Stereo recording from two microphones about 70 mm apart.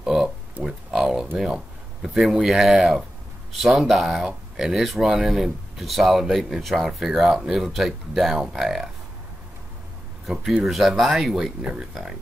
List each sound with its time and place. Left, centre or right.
0.0 s a sound: centre
0.7 s speech: centre
10.2 s speech: centre